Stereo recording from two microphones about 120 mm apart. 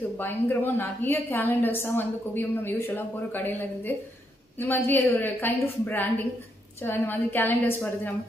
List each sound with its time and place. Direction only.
0.2 s a woman's voice: 20° left (ahead or behind)